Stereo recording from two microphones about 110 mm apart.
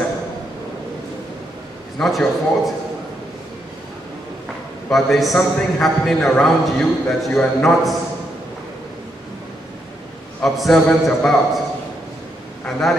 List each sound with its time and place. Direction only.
2.0 s a man's voice: centre (ahead or behind)
4.8 s a man's voice: centre (ahead or behind)
10.4 s a man's voice: centre (ahead or behind)